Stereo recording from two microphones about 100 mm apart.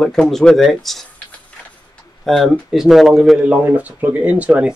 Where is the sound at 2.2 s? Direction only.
Centre (ahead or behind).